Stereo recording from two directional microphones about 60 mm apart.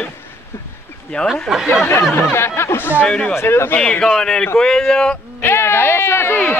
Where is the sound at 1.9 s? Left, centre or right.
Left.